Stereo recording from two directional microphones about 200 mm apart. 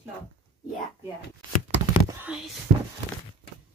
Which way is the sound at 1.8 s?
15° right (ahead or behind).